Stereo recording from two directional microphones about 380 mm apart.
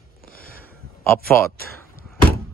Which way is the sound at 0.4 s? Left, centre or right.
Left.